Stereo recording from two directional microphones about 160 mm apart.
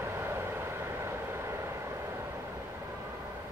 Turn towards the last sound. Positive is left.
turn(degrees=-15)  # may be behind; listen again after turning